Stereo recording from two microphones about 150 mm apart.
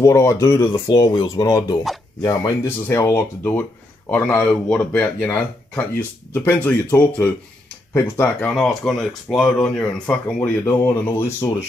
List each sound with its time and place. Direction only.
0.0 s speech: 20° left (ahead or behind)
8.5 s speech: 5° left (ahead or behind)
10.6 s speech: 20° left (ahead or behind)